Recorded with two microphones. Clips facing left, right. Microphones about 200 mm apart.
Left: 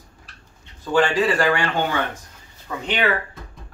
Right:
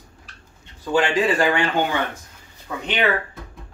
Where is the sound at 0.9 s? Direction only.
15° right (ahead or behind).